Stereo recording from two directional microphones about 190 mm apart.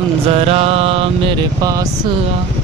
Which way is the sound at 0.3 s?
30° right (ahead or behind).